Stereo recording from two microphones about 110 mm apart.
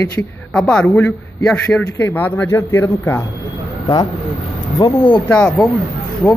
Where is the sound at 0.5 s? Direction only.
5° left (ahead or behind).